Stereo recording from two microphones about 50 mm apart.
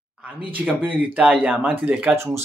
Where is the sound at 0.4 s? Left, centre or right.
Right.